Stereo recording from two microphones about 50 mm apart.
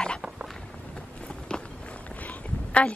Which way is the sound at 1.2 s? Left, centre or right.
Centre.